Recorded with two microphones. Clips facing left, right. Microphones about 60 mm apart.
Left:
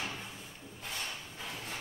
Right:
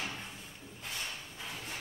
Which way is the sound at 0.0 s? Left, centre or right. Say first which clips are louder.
Even; centre.